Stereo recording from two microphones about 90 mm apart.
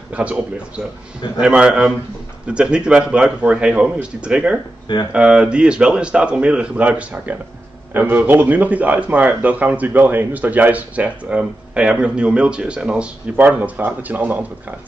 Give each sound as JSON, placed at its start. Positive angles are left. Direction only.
{"t": 0.1, "sound": "speech", "side_deg": -15}
{"t": 1.4, "sound": "speech", "side_deg": -10}